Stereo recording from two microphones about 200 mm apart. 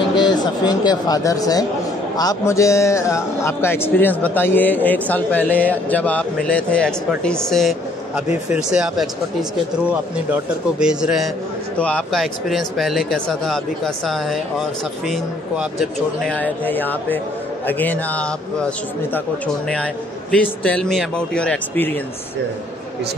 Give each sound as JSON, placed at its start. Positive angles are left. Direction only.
{"t": 0.2, "sound": "a man's voice", "side_deg": 20}